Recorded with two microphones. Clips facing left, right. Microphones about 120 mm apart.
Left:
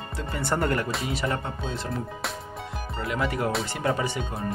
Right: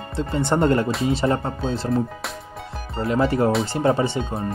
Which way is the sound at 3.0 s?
35° right (ahead or behind).